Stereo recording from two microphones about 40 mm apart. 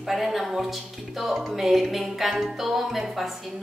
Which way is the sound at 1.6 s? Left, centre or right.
Centre.